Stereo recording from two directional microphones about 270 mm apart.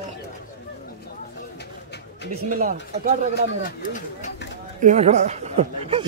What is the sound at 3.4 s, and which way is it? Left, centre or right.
Speech, left.